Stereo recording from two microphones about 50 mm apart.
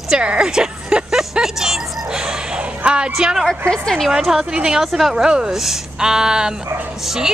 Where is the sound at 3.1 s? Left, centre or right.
Centre.